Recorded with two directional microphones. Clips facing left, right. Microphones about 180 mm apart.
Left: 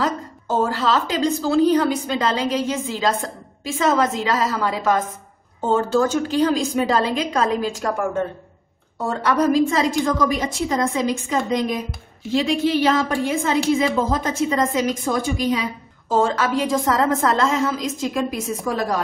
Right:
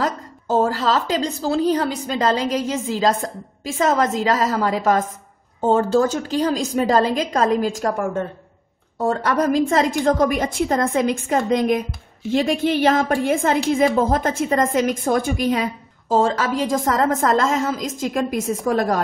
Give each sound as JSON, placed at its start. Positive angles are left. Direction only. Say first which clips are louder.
{"t": 0.7, "sound": "a woman's voice", "louder": "right 1 dB", "side_deg": -40}
{"t": 9.2, "sound": "a woman's voice", "louder": "left 4 dB", "side_deg": -50}
{"t": 16.1, "sound": "a woman's voice", "louder": "right 1 dB", "side_deg": -30}